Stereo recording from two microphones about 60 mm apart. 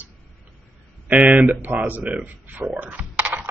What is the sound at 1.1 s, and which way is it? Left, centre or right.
Speech, right.